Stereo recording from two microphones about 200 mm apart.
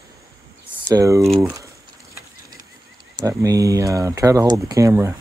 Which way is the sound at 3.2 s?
15° right (ahead or behind).